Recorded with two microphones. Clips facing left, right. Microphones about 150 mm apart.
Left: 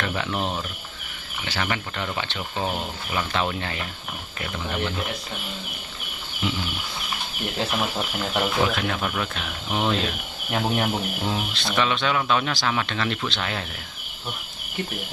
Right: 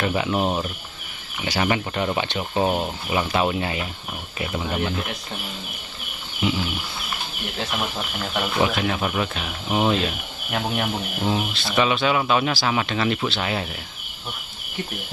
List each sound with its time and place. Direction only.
0.0 s speech: 10° right (ahead or behind)
3.3 s speech: 10° right (ahead or behind)
6.4 s speech: 5° right (ahead or behind)